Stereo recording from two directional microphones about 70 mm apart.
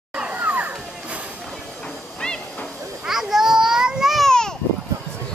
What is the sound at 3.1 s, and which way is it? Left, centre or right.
Children playing, centre.